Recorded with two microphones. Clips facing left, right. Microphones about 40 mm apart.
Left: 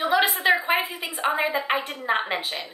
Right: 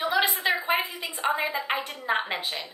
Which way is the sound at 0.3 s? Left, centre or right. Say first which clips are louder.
Left 5 dB; left.